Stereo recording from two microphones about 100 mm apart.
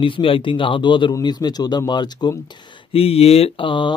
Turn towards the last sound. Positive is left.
turn(degrees=55)  # may be behind; listen again after turning